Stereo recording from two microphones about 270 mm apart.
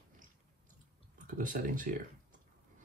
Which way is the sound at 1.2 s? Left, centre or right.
Right.